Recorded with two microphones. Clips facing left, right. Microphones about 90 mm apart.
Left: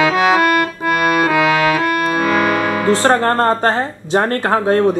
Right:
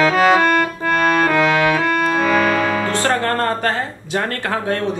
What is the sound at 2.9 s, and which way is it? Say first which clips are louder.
Speech: left 5 dB; 25° left (ahead or behind).